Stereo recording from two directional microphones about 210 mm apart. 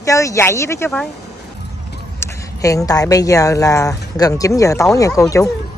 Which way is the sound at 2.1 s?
15° left (ahead or behind).